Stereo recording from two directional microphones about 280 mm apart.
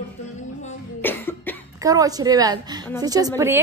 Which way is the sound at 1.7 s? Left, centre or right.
Centre.